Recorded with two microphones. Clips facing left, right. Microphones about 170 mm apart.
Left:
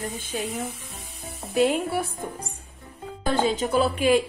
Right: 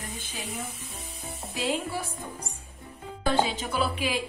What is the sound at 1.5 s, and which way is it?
Speech, 55° left (ahead or behind).